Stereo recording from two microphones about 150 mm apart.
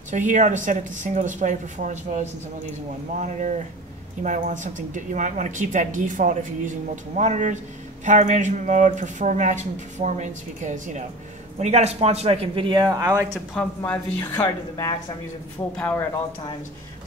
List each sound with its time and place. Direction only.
0.1 s speech: 55° right (ahead or behind); by 12.8 s 35° right (ahead or behind)
12.8 s speech: 25° right (ahead or behind)
13.6 s speech: 10° left (ahead or behind)